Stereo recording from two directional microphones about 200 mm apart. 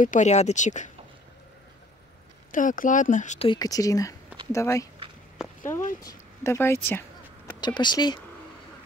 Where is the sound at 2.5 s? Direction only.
40° left (ahead or behind); by 4.9 s 15° left (ahead or behind).